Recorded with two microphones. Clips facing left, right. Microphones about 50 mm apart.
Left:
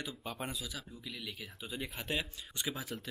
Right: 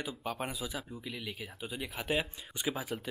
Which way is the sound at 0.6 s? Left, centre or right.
Centre.